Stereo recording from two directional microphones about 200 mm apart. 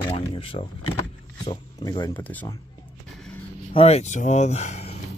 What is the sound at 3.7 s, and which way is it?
Speech, 30° left (ahead or behind).